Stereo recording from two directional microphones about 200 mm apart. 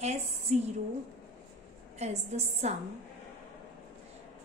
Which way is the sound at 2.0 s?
35° right (ahead or behind).